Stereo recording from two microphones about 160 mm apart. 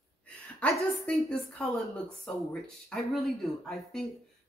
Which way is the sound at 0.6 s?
5° left (ahead or behind).